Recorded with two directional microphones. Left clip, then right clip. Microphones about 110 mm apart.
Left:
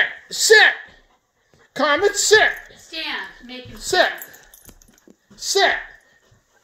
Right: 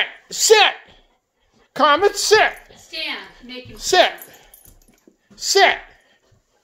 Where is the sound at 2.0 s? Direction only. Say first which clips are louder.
Right 1 dB; centre (ahead or behind).